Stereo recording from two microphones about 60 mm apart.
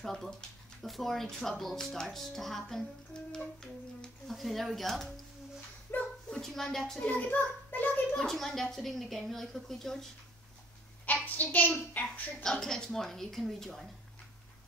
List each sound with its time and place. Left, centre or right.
0.0 s speech: centre
4.3 s speech: centre
5.9 s a sound: left
6.3 s speech: centre
7.1 s a sound: left
8.2 s speech: centre
11.1 s a child's voice: left
12.4 s speech: centre